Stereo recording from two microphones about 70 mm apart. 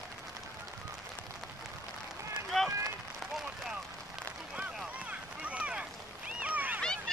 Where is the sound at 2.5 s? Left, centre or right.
Centre.